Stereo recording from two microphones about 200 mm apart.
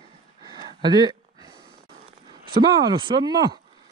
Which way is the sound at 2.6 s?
25° right (ahead or behind).